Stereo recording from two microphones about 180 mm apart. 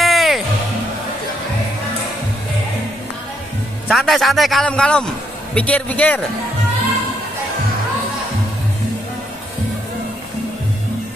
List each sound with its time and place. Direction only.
0.0 s music: centre (ahead or behind)
3.9 s a man's voice: centre (ahead or behind)